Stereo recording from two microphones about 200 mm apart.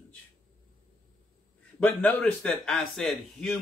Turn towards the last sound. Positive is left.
turn(degrees=0)  # may be behind; listen again after turning